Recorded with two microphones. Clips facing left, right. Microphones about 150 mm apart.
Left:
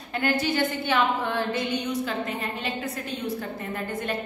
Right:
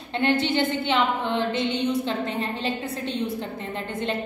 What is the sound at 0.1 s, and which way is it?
A woman's voice, 25° right (ahead or behind).